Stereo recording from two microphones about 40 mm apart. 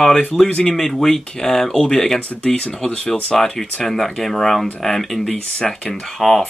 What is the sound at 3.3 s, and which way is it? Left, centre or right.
Speech, centre.